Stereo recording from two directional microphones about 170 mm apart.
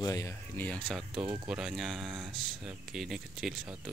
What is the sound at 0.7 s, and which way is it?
Speech, centre (ahead or behind).